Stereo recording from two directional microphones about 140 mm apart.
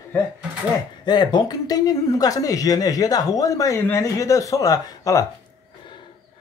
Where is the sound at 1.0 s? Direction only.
30° left (ahead or behind).